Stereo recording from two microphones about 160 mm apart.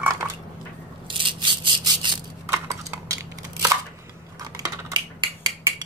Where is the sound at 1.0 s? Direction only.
30° right (ahead or behind).